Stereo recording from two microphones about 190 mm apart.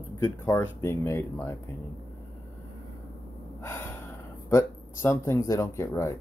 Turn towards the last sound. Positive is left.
turn(degrees=15)  # may be behind; listen again after turning